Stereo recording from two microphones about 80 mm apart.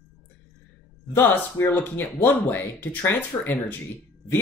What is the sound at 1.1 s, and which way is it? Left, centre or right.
Speech, left.